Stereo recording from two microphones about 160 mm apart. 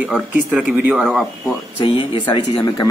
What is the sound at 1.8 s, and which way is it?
Speech, 30° left (ahead or behind).